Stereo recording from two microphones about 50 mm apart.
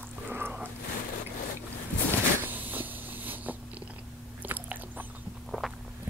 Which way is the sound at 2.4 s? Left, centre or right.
Right.